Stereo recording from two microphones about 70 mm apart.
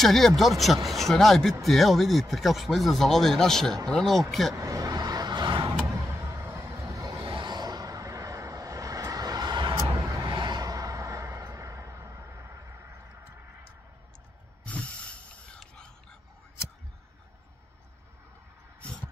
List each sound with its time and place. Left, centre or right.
0.0 s speech: centre
4.6 s vehicle: right
5.9 s a sound: right
6.9 s vehicle: right
7.4 s vehicle: right
9.8 s vehicle: right
10.3 s a sound: right
14.6 s snort: centre